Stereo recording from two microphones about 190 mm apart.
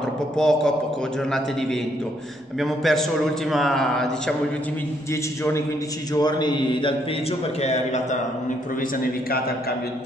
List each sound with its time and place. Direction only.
0.4 s a man's voice: 5° left (ahead or behind)
2.6 s a man's voice: centre (ahead or behind)
6.1 s a man's voice: 20° left (ahead or behind)
7.6 s a man's voice: 35° left (ahead or behind)